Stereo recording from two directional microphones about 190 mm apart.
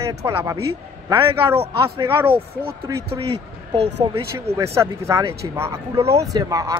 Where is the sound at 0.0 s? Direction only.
15° right (ahead or behind).